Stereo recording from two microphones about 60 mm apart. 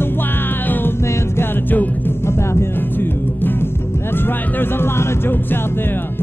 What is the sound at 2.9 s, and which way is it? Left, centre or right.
Music, left.